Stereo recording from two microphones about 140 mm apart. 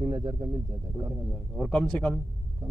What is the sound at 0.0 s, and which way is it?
Speech, 25° right (ahead or behind).